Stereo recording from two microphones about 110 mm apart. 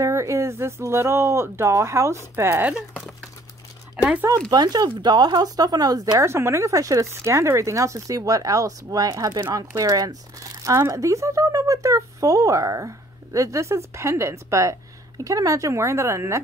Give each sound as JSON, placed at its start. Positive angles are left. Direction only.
{"t": 0.0, "sound": "speech", "side_deg": -30}
{"t": 4.5, "sound": "speech", "side_deg": -40}